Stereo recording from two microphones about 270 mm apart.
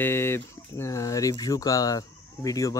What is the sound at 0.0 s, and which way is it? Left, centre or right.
Speech, centre.